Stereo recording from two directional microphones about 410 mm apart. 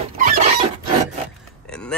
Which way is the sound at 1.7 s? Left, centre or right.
Centre.